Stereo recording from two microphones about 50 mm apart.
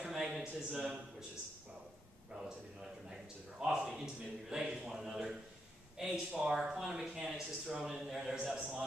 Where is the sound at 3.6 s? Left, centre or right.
Centre.